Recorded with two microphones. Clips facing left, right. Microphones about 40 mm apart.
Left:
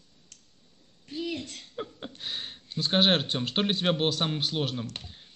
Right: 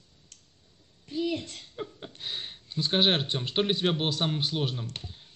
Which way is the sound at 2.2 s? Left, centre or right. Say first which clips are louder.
Even; centre.